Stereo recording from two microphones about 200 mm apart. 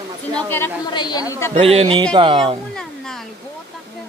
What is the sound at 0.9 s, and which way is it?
Speech, 20° left (ahead or behind).